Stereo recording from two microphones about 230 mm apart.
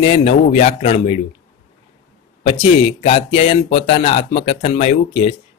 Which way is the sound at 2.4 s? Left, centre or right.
Left.